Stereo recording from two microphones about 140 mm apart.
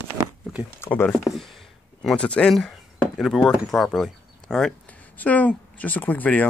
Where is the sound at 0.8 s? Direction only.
15° left (ahead or behind).